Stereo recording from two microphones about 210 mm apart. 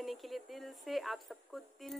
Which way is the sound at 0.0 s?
Centre (ahead or behind).